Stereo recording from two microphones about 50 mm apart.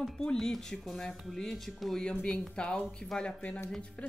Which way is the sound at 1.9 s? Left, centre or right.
Centre.